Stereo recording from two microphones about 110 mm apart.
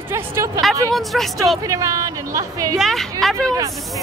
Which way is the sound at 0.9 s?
Centre (ahead or behind).